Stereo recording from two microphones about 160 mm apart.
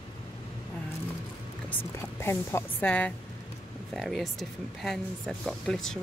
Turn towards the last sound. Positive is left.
turn(degrees=5)  # may be behind; listen again after turning